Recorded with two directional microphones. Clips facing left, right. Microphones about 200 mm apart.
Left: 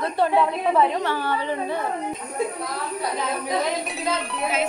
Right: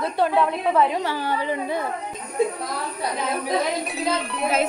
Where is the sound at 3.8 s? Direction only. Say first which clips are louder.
Right 2 dB; centre (ahead or behind).